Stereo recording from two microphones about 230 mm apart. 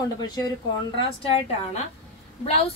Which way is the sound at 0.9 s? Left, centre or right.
Left.